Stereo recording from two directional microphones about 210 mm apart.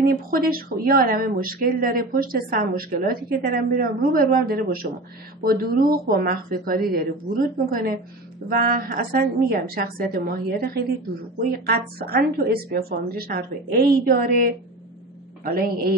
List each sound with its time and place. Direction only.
0.0 s speech: 45° right (ahead or behind)